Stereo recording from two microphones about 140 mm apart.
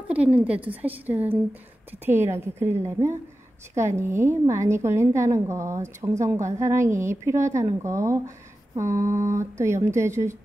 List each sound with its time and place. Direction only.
0.1 s a woman's voice: 10° right (ahead or behind)